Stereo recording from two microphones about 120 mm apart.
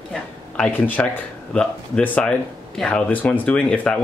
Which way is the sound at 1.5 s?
5° left (ahead or behind).